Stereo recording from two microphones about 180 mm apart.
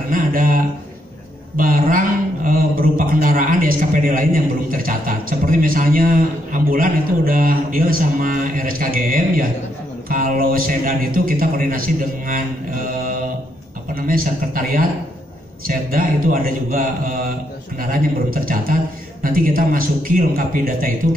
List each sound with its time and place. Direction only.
0.1 s a man's voice: 50° right (ahead or behind)
1.6 s a man's voice: 50° right (ahead or behind)